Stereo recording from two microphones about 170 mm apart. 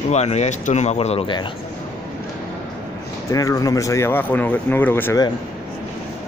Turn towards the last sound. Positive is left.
turn(degrees=15)  # may be behind; listen again after turning